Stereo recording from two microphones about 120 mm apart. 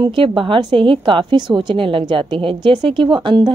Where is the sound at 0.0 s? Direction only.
45° right (ahead or behind).